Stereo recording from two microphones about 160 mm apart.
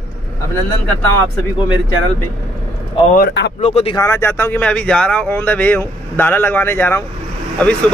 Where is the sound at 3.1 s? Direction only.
85° left.